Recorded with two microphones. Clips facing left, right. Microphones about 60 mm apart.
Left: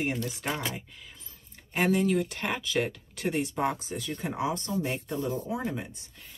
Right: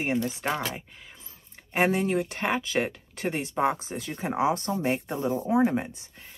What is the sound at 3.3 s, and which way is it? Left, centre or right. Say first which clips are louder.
Speech: left 2 dB; right.